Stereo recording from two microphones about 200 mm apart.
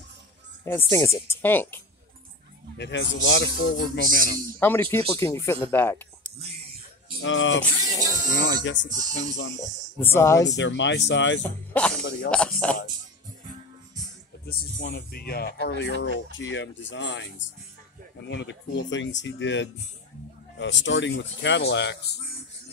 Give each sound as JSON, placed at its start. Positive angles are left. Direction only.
{"t": 0.7, "sound": "speech", "side_deg": 15}
{"t": 2.8, "sound": "speech", "side_deg": 60}
{"t": 4.6, "sound": "speech", "side_deg": 10}
{"t": 7.2, "sound": "speech", "side_deg": 70}
{"t": 7.6, "sound": "speech", "side_deg": 15}
{"t": 8.4, "sound": "speech", "side_deg": 65}
{"t": 9.6, "sound": "speech", "side_deg": 10}
{"t": 10.5, "sound": "speech", "side_deg": 65}
{"t": 11.7, "sound": "music", "side_deg": 5}
{"t": 12.3, "sound": "speech", "side_deg": 5}
{"t": 14.5, "sound": "speech", "side_deg": 50}